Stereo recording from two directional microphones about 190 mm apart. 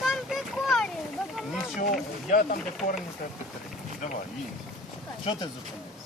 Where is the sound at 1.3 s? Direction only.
Centre (ahead or behind).